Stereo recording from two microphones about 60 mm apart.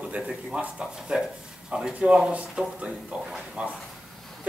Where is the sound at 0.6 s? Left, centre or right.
Centre.